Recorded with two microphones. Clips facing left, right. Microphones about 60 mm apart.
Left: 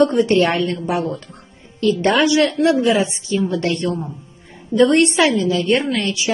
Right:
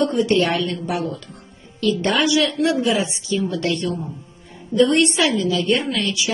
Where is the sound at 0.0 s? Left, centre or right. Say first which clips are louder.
Left 4 dB; left.